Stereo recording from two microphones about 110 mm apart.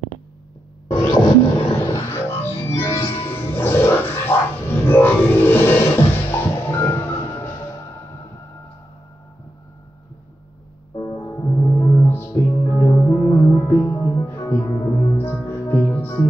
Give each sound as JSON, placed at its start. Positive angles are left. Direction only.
{"t": 1.7, "sound": "music", "side_deg": 25}
{"t": 3.3, "sound": "music", "side_deg": 20}
{"t": 11.0, "sound": "music", "side_deg": 30}